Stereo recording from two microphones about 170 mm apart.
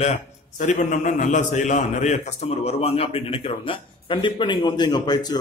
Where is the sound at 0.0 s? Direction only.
45° left (ahead or behind).